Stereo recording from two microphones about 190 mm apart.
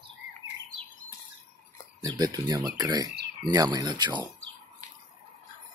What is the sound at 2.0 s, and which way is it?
Speech, 20° right (ahead or behind).